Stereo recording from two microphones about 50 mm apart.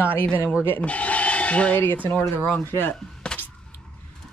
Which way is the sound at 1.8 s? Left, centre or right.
Left.